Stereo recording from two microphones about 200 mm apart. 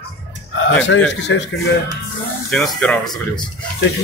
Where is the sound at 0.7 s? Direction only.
65° left (ahead or behind).